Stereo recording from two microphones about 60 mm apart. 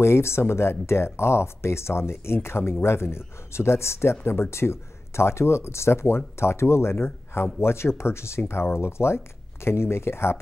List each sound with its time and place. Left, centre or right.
0.0 s speech: left